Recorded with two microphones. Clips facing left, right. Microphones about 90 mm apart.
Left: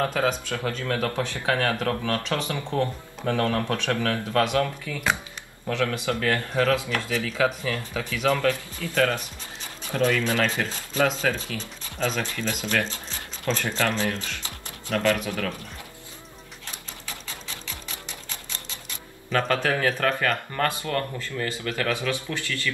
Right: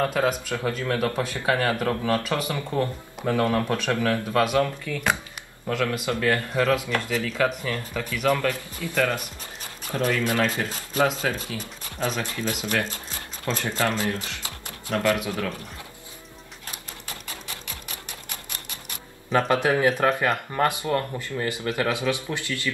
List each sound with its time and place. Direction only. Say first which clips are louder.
0.1 s speech: right 1 dB; 10° right (ahead or behind)
4.8 s speech: right 1 dB; 15° left (ahead or behind)
5.7 s a man's voice: even; 10° right (ahead or behind)
9.9 s speech: left 1 dB; 10° right (ahead or behind)
19.3 s speech: right 3 dB; 20° right (ahead or behind)